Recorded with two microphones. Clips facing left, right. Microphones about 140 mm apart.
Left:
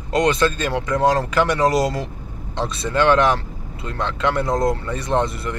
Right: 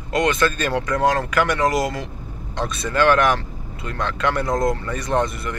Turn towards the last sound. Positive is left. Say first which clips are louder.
# left 1 dB
turn(degrees=30)  # may be behind; listen again after turning